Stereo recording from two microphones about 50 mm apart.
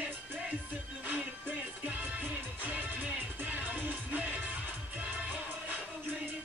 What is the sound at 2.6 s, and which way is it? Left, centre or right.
Music, right.